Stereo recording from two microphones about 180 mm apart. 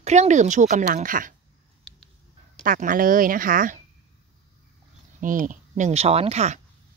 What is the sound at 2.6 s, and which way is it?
Speech, 50° right (ahead or behind).